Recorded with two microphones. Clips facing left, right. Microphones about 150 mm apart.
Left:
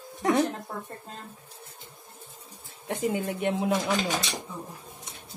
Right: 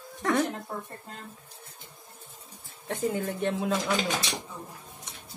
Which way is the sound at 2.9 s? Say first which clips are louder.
Left 1 dB; 20° left (ahead or behind).